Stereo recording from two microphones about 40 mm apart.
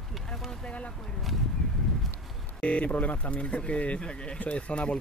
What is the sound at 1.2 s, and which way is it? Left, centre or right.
Speech, centre.